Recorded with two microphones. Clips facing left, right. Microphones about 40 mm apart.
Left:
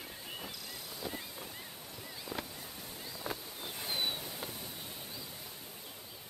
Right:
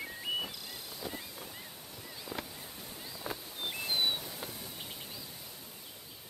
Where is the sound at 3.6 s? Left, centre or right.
Right.